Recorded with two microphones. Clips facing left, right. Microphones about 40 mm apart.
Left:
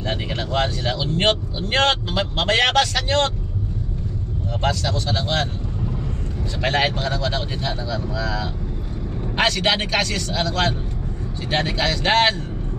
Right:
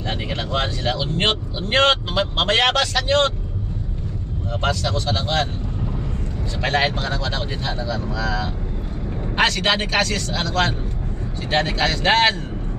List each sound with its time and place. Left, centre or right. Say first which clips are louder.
0.0 s speech: even; centre
4.6 s speech: even; centre
5.2 s speech: right 1 dB; centre
6.6 s speech: even; centre